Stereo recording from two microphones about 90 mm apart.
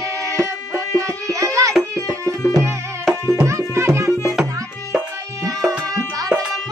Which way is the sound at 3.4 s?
35° right (ahead or behind).